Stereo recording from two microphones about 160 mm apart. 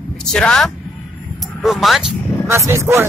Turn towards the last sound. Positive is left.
turn(degrees=-15)  # may be behind; listen again after turning